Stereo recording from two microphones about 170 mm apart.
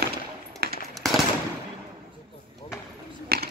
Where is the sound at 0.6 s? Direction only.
65° right (ahead or behind).